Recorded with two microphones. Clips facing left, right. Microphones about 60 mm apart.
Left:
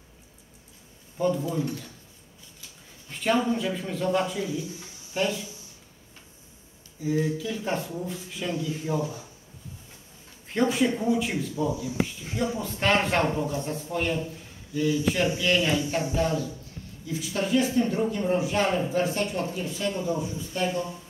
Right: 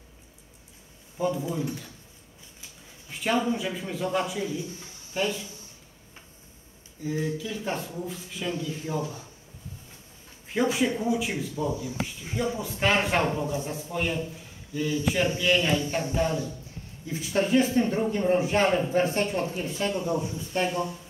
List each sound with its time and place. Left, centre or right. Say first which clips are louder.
1.1 s speech: left 2 dB; centre
3.1 s speech: left 1 dB; centre
7.0 s speech: left 3 dB; centre
10.5 s speech: left 1 dB; centre
11.7 s speech: left 3 dB; centre
12.2 s speech: even; centre
15.3 s speech: even; centre
17.0 s a man's voice: right 3 dB; right
19.9 s speech: left 1 dB; centre
20.6 s speech: left 2 dB; centre